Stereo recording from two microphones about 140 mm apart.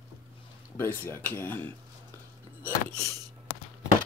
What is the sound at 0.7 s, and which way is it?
Speech, 15° left (ahead or behind).